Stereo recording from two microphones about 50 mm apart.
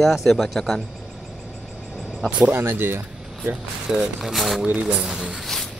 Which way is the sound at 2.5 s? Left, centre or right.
Right.